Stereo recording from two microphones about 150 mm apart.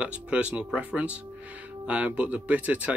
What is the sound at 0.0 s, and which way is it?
Speech, 10° right (ahead or behind).